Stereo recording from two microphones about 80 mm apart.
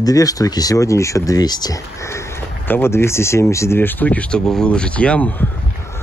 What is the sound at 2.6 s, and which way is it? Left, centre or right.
Speech, left.